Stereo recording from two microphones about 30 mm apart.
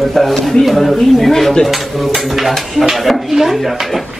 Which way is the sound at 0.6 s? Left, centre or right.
Centre.